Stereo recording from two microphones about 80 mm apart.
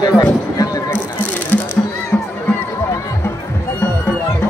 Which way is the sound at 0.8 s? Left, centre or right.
Left.